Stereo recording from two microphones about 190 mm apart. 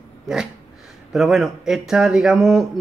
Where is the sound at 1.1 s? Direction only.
Centre (ahead or behind).